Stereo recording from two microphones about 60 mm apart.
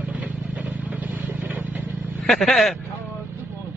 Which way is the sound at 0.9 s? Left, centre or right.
Right.